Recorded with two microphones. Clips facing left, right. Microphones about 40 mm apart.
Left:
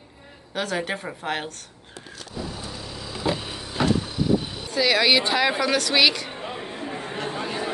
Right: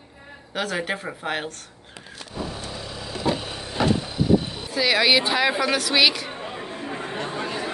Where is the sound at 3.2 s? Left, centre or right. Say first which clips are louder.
Right 1 dB; centre.